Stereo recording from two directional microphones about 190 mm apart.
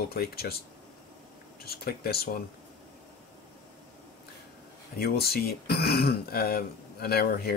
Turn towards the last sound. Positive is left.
turn(degrees=55)  # may be behind; listen again after turning